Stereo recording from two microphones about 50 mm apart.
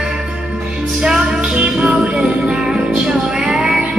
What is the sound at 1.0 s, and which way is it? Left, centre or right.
Music, centre.